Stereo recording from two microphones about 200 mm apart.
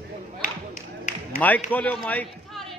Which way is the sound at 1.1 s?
40° left (ahead or behind).